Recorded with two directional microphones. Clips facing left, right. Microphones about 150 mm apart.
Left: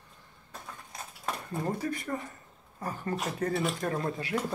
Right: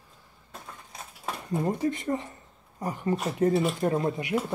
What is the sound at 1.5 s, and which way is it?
Speech, 20° right (ahead or behind).